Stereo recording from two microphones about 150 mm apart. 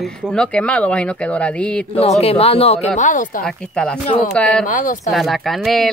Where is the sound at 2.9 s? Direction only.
60° left (ahead or behind).